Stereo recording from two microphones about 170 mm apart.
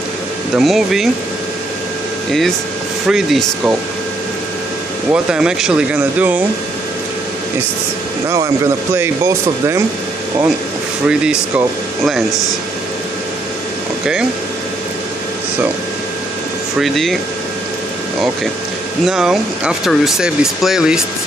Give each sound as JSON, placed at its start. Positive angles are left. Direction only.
{"t": 0.6, "sound": "speech", "side_deg": 0}
{"t": 3.1, "sound": "speech", "side_deg": -5}
{"t": 5.1, "sound": "speech", "side_deg": -5}
{"t": 8.9, "sound": "speech", "side_deg": -15}
{"t": 11.1, "sound": "speech", "side_deg": -5}
{"t": 16.8, "sound": "speech", "side_deg": 0}
{"t": 19.0, "sound": "speech", "side_deg": -5}